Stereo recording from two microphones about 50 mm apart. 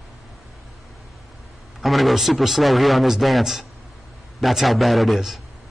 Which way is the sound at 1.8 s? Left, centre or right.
Centre.